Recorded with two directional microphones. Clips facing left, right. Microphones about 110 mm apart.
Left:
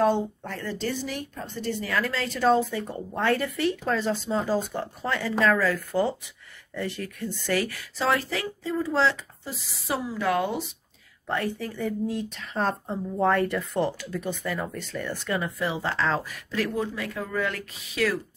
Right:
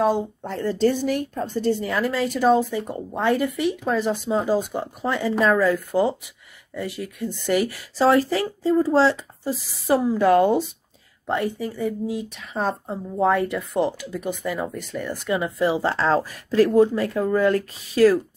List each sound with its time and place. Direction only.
0.4 s speech: 30° right (ahead or behind)
1.9 s a woman's voice: 20° right (ahead or behind)
8.0 s speech: 35° right (ahead or behind)
9.8 s speech: 50° right (ahead or behind)
11.2 s a woman's voice: 20° right (ahead or behind)
15.2 s speech: 20° right (ahead or behind)